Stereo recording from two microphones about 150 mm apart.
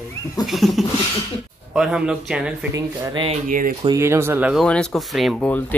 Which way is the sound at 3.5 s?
70° right (ahead or behind).